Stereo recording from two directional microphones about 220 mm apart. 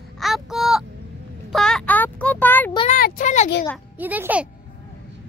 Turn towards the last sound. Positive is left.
turn(degrees=-5)  # may be behind; listen again after turning